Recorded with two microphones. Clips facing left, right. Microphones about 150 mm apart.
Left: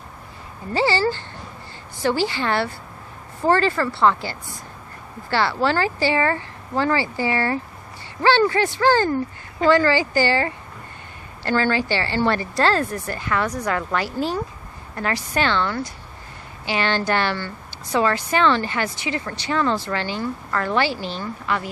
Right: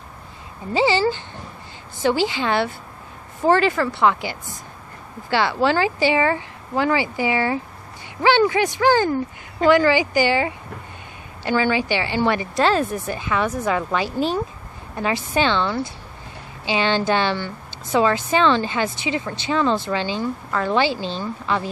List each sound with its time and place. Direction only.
0.7 s a woman's voice: 20° right (ahead or behind)